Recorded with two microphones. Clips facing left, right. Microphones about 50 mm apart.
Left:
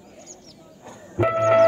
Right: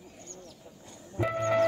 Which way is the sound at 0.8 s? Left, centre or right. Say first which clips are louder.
Left 9 dB; left.